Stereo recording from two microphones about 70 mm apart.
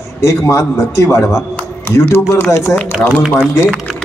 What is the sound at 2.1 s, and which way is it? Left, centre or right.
Speech, left.